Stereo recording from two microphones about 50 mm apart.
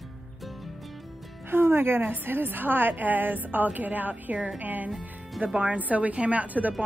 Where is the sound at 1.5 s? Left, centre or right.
Right.